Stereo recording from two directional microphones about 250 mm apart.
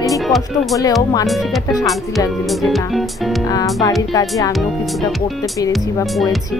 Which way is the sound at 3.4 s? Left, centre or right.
Centre.